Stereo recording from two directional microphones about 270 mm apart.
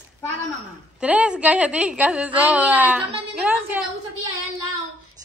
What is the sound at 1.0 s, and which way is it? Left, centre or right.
A woman's voice, centre.